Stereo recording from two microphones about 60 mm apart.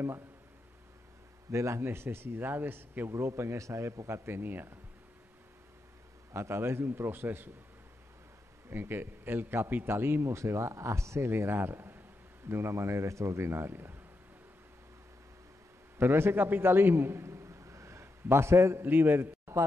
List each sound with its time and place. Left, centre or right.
1.5 s speech: right
3.1 s speech: right
4.1 s speech: right
6.3 s speech: right
8.6 s speech: right
16.0 s a man's voice: right
18.9 s speech: right